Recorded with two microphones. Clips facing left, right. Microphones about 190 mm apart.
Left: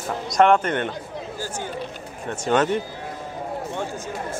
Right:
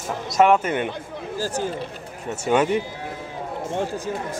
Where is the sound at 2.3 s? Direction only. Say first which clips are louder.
Right 1 dB; 10° right (ahead or behind).